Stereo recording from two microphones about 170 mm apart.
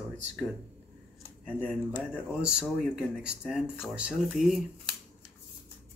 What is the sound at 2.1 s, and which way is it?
Speech, 5° right (ahead or behind).